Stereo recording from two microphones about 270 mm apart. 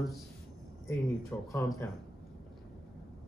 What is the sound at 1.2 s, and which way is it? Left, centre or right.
Speech, centre.